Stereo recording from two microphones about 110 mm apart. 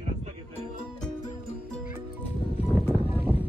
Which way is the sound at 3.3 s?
15° right (ahead or behind).